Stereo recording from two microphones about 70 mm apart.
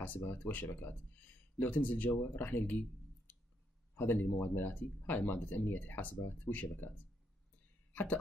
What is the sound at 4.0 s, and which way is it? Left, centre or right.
Speech, left.